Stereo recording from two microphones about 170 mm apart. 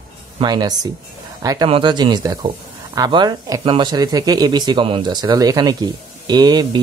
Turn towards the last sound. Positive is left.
turn(degrees=-25)  # may be behind; listen again after turning